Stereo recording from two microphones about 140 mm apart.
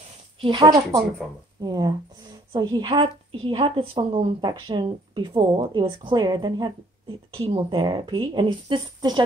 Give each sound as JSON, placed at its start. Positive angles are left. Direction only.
{"t": 0.4, "sound": "speech", "side_deg": -40}
{"t": 0.7, "sound": "a woman's voice", "side_deg": -25}
{"t": 4.5, "sound": "a woman's voice", "side_deg": -30}